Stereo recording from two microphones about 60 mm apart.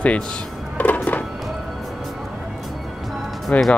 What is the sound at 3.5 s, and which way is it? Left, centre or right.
Speech, left.